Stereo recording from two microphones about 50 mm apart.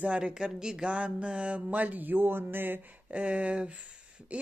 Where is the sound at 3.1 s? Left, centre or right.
Right.